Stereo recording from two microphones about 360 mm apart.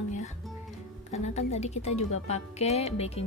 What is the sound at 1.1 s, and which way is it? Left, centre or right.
A woman's voice, centre.